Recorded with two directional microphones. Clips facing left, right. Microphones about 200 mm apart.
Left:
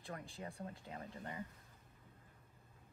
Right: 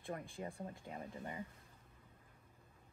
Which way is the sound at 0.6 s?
20° right (ahead or behind).